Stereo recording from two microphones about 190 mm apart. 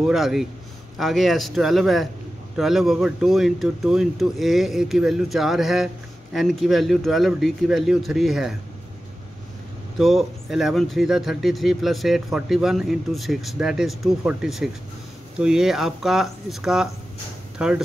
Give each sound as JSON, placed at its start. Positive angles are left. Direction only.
{"t": 0.0, "sound": "speech", "side_deg": 0}
{"t": 9.9, "sound": "speech", "side_deg": 0}